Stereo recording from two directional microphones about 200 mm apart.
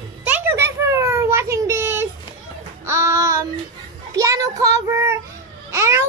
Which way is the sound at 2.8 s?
15° right (ahead or behind).